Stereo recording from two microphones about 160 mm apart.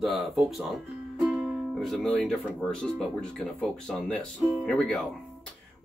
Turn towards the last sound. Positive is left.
turn(degrees=5)  # may be behind; listen again after turning